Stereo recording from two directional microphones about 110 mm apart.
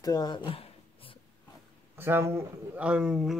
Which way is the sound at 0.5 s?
55° left (ahead or behind).